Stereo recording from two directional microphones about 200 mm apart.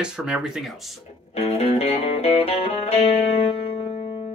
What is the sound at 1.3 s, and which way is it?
Music, 30° left (ahead or behind).